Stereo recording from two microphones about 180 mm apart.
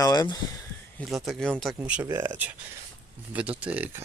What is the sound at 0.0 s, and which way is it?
Speech, 20° left (ahead or behind).